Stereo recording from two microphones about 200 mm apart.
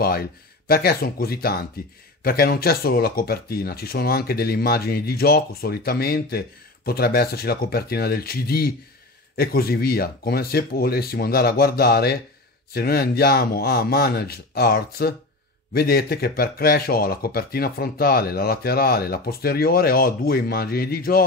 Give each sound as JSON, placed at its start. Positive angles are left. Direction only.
{"t": 0.0, "sound": "speech", "side_deg": 50}